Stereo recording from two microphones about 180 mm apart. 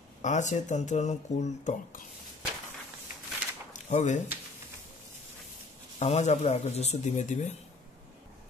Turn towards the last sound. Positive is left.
turn(degrees=40)  # may be behind; listen again after turning